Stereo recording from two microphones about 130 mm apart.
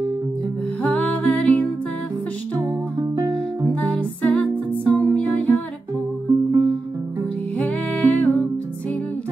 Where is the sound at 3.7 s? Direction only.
10° left (ahead or behind).